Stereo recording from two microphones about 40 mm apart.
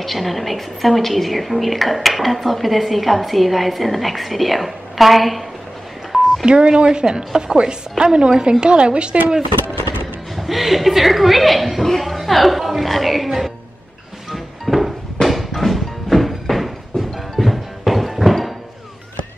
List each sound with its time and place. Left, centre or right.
0.0 s a woman's voice: centre
6.4 s speech: right
10.3 s a woman's voice: centre
14.3 s a sound: centre
15.2 s music: centre